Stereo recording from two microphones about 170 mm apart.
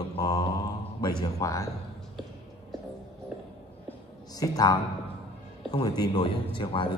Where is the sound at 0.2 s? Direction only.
25° left (ahead or behind).